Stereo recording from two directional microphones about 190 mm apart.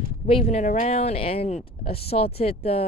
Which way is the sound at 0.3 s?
35° left (ahead or behind).